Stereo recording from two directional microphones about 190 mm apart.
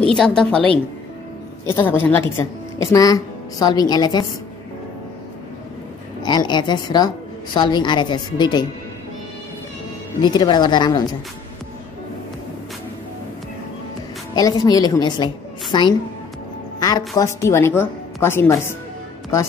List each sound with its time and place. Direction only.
0.0 s a woman's voice: 5° left (ahead or behind)
1.8 s a woman's voice: 10° left (ahead or behind)
6.2 s a woman's voice: 20° left (ahead or behind)
10.2 s a woman's voice: 25° left (ahead or behind)
14.3 s a woman's voice: 20° left (ahead or behind)